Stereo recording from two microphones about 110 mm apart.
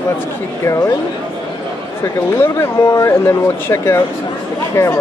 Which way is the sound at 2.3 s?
20° left (ahead or behind).